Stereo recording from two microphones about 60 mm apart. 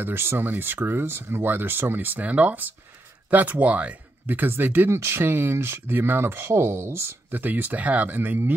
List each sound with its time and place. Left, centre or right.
0.0 s speech: right